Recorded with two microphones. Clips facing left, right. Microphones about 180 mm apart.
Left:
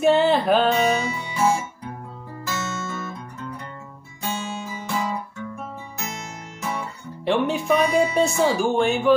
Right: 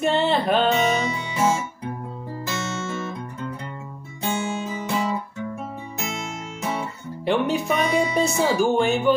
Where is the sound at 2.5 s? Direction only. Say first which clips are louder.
Even; 20° right (ahead or behind).